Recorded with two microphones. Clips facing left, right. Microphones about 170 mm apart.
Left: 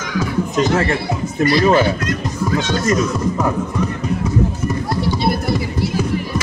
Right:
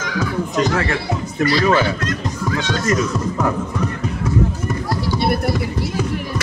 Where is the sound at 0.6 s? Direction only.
25° left (ahead or behind).